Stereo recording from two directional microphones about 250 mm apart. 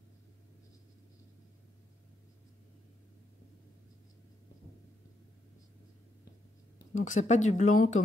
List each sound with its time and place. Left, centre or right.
6.9 s speech: left